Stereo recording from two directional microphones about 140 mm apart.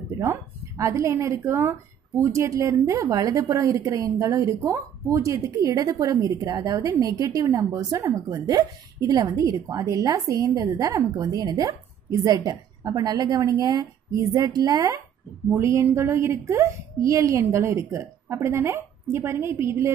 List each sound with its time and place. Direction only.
0.2 s a woman's voice: 20° right (ahead or behind)